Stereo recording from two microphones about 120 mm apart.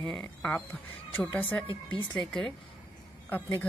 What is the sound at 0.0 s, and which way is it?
Speech, 20° left (ahead or behind).